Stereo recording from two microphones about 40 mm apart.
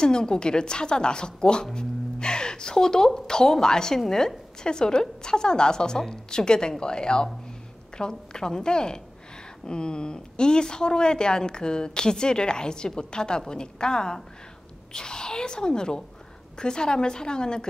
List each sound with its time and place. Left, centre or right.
0.0 s a woman's voice: centre